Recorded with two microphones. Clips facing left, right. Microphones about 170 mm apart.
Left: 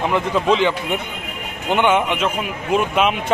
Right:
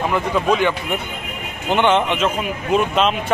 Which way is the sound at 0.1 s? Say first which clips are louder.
Left 1 dB; 20° left (ahead or behind).